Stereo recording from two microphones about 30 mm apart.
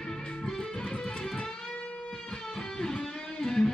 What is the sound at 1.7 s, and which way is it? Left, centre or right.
Guitar, left.